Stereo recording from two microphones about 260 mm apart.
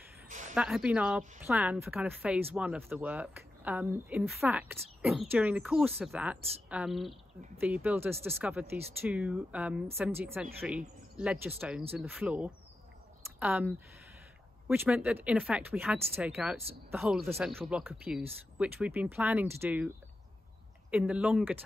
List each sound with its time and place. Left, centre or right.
0.3 s a sound: right
0.6 s speech: centre
20.9 s speech: centre